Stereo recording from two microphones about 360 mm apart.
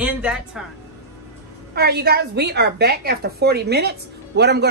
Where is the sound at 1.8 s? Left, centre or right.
Right.